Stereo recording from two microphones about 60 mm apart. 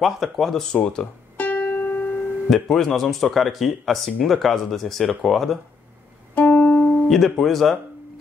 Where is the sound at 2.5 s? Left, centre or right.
Centre.